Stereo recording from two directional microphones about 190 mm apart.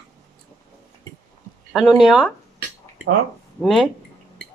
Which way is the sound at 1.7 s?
Centre (ahead or behind).